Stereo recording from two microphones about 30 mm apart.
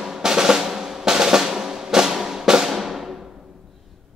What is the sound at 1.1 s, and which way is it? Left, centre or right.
Drum, right.